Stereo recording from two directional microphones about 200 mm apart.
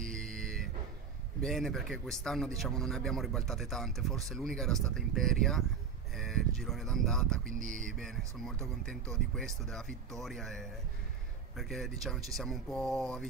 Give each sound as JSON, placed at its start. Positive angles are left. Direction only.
{"t": 0.1, "sound": "music", "side_deg": 5}
{"t": 1.4, "sound": "speech", "side_deg": 0}
{"t": 7.5, "sound": "a sound", "side_deg": -40}
{"t": 7.9, "sound": "speech", "side_deg": 0}